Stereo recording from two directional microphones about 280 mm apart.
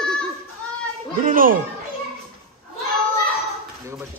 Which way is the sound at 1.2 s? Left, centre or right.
Right.